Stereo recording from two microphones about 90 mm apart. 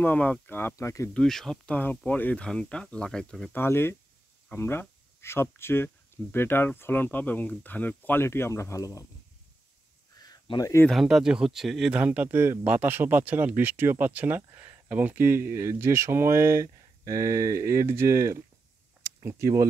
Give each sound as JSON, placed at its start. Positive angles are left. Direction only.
{"t": 0.0, "sound": "speech", "side_deg": 20}
{"t": 1.1, "sound": "speech", "side_deg": 5}
{"t": 1.7, "sound": "speech", "side_deg": 20}
{"t": 3.5, "sound": "speech", "side_deg": 25}
{"t": 10.1, "sound": "a sound", "side_deg": 45}
{"t": 10.9, "sound": "speech", "side_deg": 0}
{"t": 11.9, "sound": "speech", "side_deg": -15}